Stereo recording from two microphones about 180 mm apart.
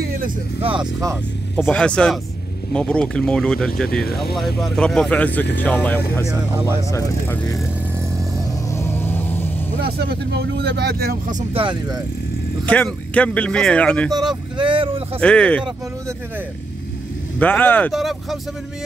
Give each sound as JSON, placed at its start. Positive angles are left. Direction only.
{"t": 1.7, "sound": "speech", "side_deg": 5}
{"t": 8.6, "sound": "vehicle", "side_deg": 15}
{"t": 9.8, "sound": "speech", "side_deg": -60}
{"t": 11.5, "sound": "speech", "side_deg": -25}
{"t": 12.6, "sound": "speech", "side_deg": 10}
{"t": 14.1, "sound": "speech", "side_deg": -25}
{"t": 15.1, "sound": "speech", "side_deg": 5}
{"t": 17.4, "sound": "speech", "side_deg": 10}
{"t": 17.9, "sound": "speech", "side_deg": 0}